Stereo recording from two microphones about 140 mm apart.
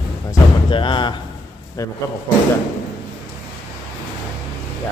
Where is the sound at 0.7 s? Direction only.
35° left (ahead or behind).